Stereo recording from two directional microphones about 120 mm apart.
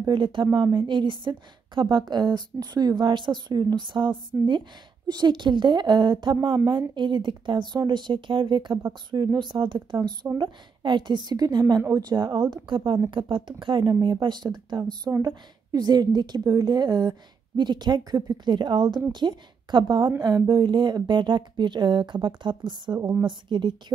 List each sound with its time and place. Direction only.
0.0 s a woman's voice: 40° right (ahead or behind)
0.5 s a woman's voice: 30° right (ahead or behind)
0.7 s a woman's voice: 40° right (ahead or behind)